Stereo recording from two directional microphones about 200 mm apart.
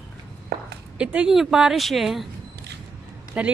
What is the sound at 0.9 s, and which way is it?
A woman's voice, 5° right (ahead or behind).